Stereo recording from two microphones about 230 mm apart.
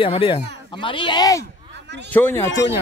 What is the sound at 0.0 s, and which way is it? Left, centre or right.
A man's voice, left.